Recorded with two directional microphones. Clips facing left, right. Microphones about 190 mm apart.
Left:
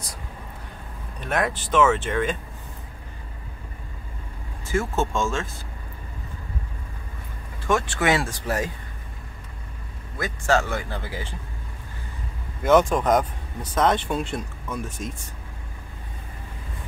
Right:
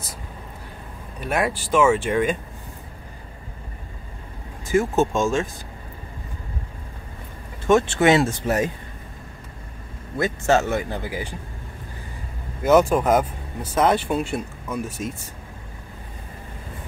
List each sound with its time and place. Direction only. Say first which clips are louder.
1.2 s speech: right 2 dB; 10° right (ahead or behind)
4.6 s speech: right 5 dB; 15° right (ahead or behind)
7.6 s speech: right 6 dB; 25° right (ahead or behind)
10.1 s speech: right 3 dB; 25° right (ahead or behind)
12.6 s speech: right 2 dB; 5° right (ahead or behind)